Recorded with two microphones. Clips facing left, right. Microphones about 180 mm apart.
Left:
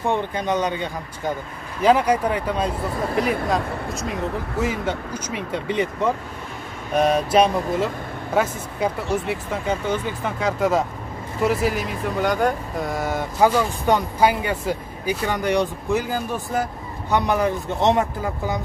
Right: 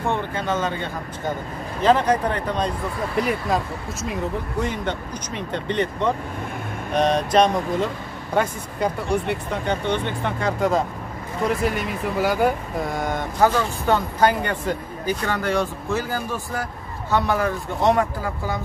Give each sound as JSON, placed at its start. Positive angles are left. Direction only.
{"t": 0.0, "sound": "speech", "side_deg": 15}